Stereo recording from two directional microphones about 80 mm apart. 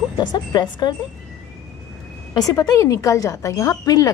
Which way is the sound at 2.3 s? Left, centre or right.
Left.